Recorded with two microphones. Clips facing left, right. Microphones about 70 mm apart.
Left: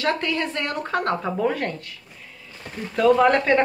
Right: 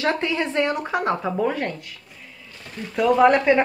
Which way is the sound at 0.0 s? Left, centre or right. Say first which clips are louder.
Right 1 dB; centre.